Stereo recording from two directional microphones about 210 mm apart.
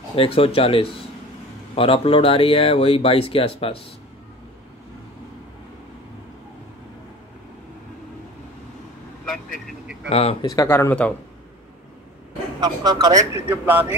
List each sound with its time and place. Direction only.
0.1 s speech: 25° left (ahead or behind)
10.0 s a man's voice: 30° left (ahead or behind)
10.5 s speech: 15° left (ahead or behind)
12.5 s a man's voice: 20° right (ahead or behind)